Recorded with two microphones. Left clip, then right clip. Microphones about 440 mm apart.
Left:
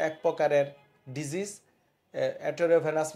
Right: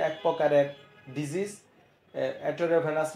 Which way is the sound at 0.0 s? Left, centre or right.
Left.